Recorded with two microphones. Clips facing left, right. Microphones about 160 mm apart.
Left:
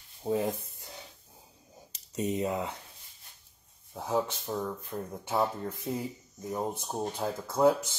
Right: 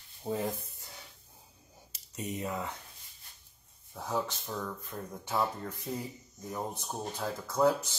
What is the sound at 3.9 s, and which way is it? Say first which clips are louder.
Speech: left 4 dB; 10° left (ahead or behind).